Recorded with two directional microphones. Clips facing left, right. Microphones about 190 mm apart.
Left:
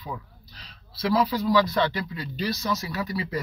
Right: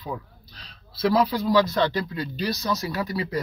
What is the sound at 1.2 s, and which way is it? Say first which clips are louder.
Speech: right 1 dB; 40° right (ahead or behind).